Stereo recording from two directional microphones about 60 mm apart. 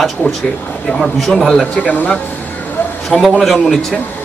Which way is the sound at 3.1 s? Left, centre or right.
Centre.